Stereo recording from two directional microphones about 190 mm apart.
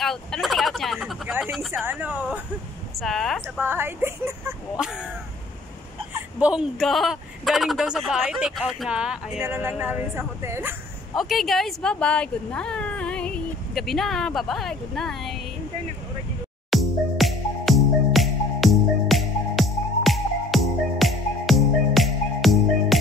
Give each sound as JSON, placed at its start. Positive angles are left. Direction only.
{"t": 0.0, "sound": "a woman's voice", "side_deg": 0}
{"t": 3.5, "sound": "a woman's voice", "side_deg": -10}
{"t": 6.1, "sound": "a woman's voice", "side_deg": -5}
{"t": 11.1, "sound": "speech", "side_deg": 0}
{"t": 16.7, "sound": "music", "side_deg": 0}